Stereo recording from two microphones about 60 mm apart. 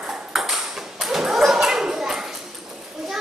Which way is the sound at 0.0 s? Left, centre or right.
Centre.